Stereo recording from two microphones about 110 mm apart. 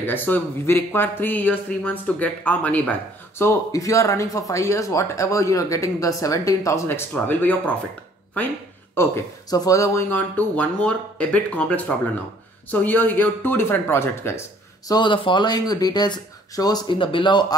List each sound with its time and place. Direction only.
0.0 s speech: 15° left (ahead or behind)
9.0 s speech: 20° left (ahead or behind)
10.0 s speech: 15° left (ahead or behind)
12.8 s speech: 15° left (ahead or behind)
14.9 s speech: 45° left (ahead or behind)